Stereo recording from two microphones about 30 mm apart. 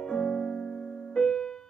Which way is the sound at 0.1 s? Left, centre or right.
Centre.